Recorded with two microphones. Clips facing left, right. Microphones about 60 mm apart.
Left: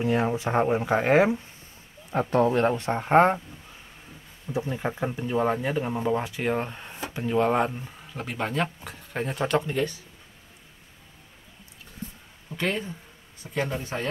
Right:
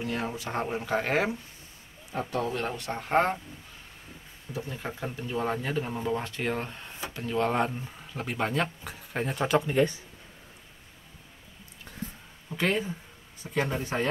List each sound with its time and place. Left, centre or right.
0.0 s speech: left
2.1 s speech: left
4.5 s speech: left; by 9.8 s centre
9.8 s speech: right
12.4 s speech: centre